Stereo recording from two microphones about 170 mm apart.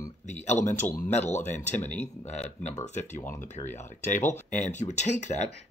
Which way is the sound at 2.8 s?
45° left (ahead or behind).